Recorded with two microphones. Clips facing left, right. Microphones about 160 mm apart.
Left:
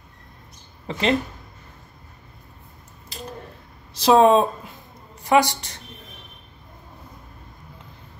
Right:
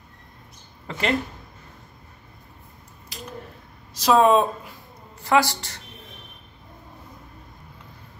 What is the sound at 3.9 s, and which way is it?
Speech, 30° left (ahead or behind).